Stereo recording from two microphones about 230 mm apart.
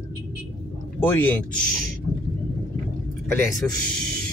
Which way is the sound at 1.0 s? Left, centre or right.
Centre.